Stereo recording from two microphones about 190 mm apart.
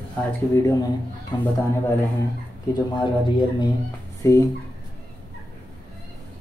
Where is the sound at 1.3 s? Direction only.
25° left (ahead or behind).